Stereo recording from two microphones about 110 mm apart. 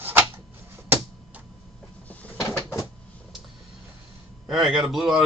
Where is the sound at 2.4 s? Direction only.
25° left (ahead or behind).